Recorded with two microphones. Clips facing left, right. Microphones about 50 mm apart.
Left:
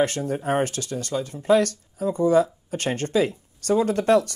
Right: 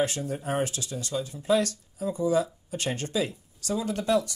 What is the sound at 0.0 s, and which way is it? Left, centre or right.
Speech, left.